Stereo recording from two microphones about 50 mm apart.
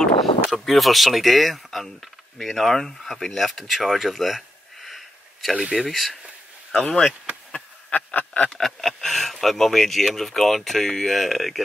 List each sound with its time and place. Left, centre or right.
0.5 s speech: centre
5.6 s speech: centre
5.9 s speech: centre
6.7 s speech: centre
7.5 s a sound: left
8.5 s a sound: centre
10.0 s speech: centre